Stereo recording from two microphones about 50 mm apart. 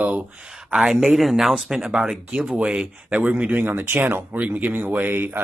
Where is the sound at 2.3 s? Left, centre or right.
Right.